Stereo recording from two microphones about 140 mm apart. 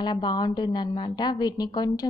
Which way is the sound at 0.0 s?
30° left (ahead or behind).